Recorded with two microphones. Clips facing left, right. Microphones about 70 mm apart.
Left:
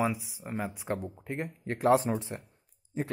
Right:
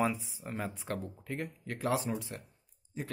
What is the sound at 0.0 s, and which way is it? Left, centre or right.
Speech, centre.